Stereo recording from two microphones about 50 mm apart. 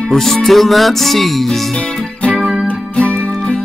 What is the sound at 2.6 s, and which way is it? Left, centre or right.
Music, left.